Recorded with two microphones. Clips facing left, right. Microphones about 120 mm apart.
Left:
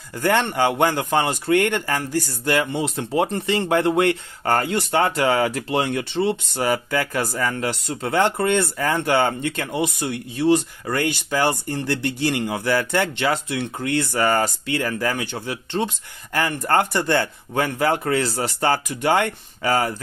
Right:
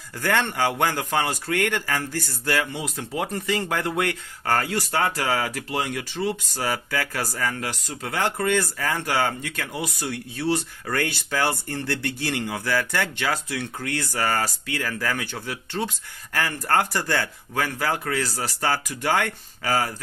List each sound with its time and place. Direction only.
0.2 s speech: 15° left (ahead or behind)